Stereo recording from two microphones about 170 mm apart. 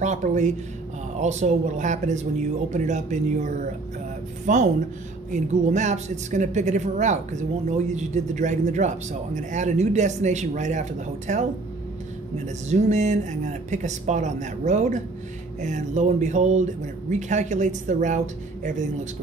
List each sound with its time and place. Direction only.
0.0 s speech: 45° right (ahead or behind)
12.6 s speech: 45° right (ahead or behind)